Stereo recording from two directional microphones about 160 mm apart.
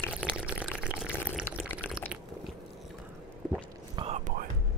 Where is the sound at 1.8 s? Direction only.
5° right (ahead or behind).